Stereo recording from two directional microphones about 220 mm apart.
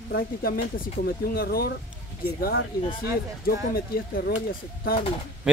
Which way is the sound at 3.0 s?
45° left (ahead or behind).